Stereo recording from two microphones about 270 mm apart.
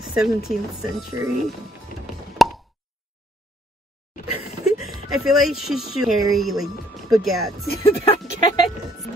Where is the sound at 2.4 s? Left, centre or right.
Centre.